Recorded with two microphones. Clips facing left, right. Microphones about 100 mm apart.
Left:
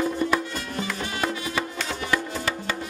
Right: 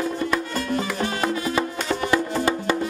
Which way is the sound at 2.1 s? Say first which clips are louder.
Right 4 dB; 25° right (ahead or behind).